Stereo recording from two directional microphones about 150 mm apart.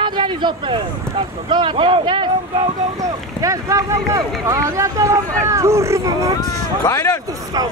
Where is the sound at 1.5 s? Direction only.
30° right (ahead or behind).